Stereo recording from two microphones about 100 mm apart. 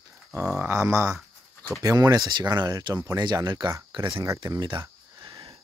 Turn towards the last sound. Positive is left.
turn(degrees=-50)  # may be behind; listen again after turning